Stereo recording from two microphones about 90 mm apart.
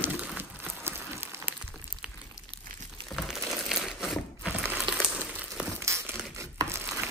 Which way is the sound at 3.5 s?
5° right (ahead or behind).